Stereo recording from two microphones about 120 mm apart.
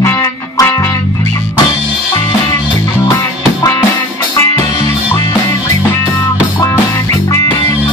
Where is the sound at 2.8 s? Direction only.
25° left (ahead or behind).